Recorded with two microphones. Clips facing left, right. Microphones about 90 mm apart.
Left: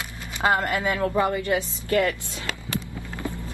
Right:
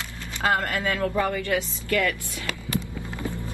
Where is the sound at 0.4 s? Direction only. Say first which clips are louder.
Left 2 dB; 20° left (ahead or behind).